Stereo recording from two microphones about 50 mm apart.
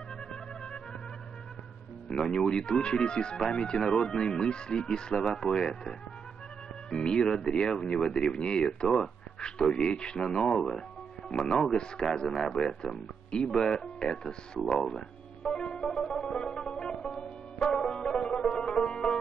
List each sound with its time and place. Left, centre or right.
2.0 s speech: centre
12.8 s speech: centre
14.9 s music: centre
16.3 s music: centre